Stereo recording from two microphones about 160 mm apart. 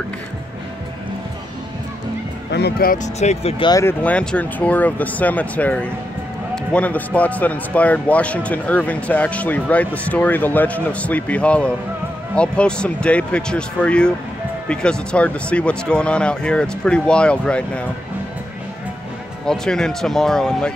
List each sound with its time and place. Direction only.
2.5 s speech: 80° left
3.2 s speech: 40° left (ahead or behind)
3.7 s a man's voice: 10° left (ahead or behind)
19.4 s speech: 5° left (ahead or behind)